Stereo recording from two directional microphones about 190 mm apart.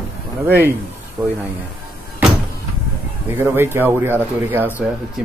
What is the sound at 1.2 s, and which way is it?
Speech, 15° right (ahead or behind).